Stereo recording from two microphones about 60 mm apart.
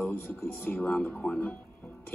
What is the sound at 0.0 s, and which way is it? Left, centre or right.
Speech, left.